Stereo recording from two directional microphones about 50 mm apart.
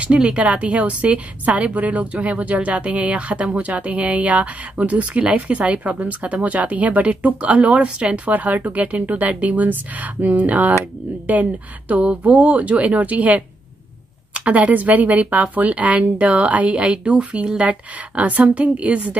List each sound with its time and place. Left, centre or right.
0.0 s a woman's voice: right